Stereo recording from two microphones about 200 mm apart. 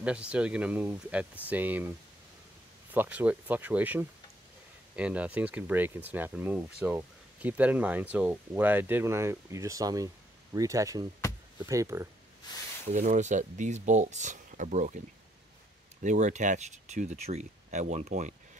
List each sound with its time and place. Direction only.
0.0 s speech: 5° right (ahead or behind)
2.9 s speech: 10° right (ahead or behind)
12.8 s speech: 35° right (ahead or behind)
16.0 s speech: 40° right (ahead or behind)